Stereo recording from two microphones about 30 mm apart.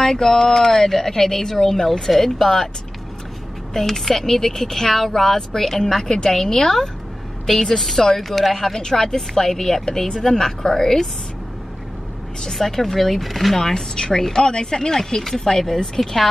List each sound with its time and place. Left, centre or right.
0.0 s a woman's voice: centre
3.7 s a woman's voice: centre
12.5 s a woman's voice: centre
13.6 s a woman's voice: centre